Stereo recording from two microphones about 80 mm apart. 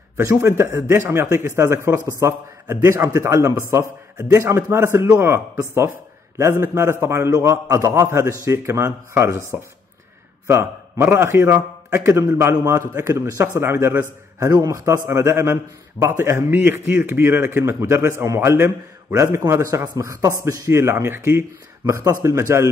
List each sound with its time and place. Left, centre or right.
0.2 s a man's voice: right
10.4 s a man's voice: right
16.4 s a man's voice: right
20.6 s a man's voice: right